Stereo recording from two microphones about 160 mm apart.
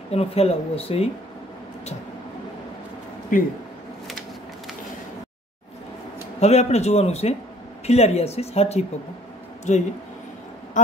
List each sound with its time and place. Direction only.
0.1 s speech: 40° left (ahead or behind)
3.3 s speech: 55° left (ahead or behind)
6.4 s speech: 40° left (ahead or behind)